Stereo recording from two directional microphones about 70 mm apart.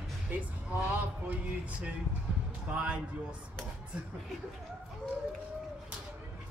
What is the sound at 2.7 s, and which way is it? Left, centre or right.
Speech, centre.